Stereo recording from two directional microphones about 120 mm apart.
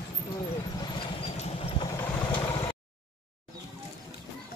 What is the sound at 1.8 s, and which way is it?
Vehicle, 25° left (ahead or behind).